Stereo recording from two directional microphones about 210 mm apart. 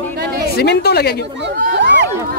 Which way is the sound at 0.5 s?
50° left (ahead or behind).